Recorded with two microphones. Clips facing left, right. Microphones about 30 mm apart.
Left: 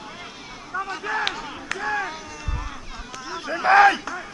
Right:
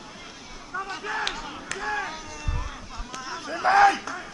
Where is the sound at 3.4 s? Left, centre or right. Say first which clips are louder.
Left 1 dB; left.